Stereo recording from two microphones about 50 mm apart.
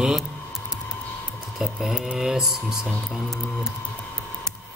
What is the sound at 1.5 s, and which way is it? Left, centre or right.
Speech, centre.